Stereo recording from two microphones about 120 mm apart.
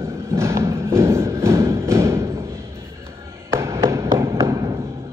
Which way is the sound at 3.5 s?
20° right (ahead or behind).